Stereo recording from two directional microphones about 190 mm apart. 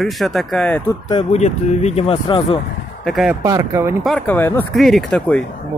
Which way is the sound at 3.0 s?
Centre (ahead or behind).